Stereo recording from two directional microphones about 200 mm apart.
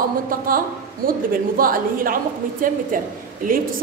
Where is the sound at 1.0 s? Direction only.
45° right (ahead or behind).